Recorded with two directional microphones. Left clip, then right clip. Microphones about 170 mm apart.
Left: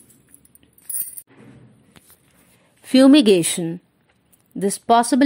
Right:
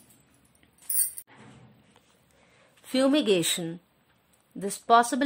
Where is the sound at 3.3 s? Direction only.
15° left (ahead or behind).